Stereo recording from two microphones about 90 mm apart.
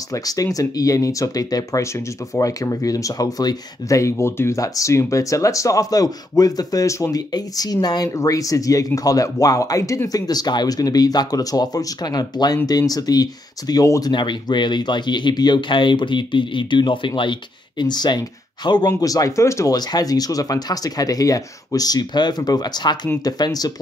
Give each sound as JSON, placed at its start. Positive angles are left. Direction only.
{"t": 0.1, "sound": "speech", "side_deg": 40}
{"t": 14.1, "sound": "speech", "side_deg": 60}
{"t": 18.9, "sound": "speech", "side_deg": 40}
{"t": 19.7, "sound": "speech", "side_deg": 45}